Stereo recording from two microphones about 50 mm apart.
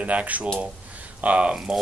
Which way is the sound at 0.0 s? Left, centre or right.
Right.